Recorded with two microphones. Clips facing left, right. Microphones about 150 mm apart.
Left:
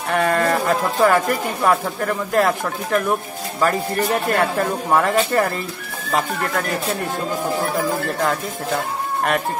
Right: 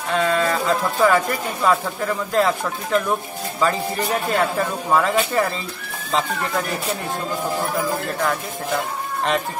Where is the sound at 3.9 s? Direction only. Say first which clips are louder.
Left 2 dB; 5° right (ahead or behind).